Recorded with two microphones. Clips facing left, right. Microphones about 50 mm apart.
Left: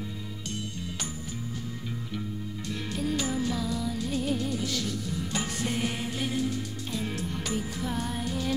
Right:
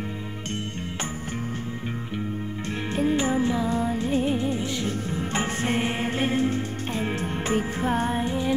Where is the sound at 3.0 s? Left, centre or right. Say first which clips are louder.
Right 7 dB; right.